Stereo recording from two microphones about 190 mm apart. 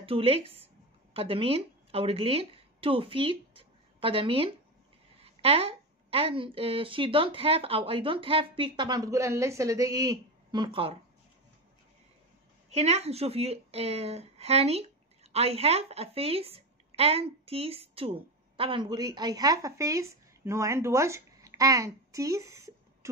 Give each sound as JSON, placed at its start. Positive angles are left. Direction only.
{"t": 0.0, "sound": "a woman's voice", "side_deg": -30}
{"t": 12.6, "sound": "a woman's voice", "side_deg": -35}